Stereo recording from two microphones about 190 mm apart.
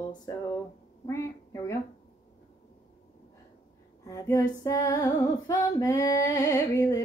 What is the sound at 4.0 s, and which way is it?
Female singing, 15° left (ahead or behind).